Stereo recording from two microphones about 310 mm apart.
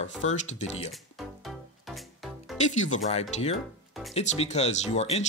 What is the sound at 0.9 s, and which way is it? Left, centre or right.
Music, centre.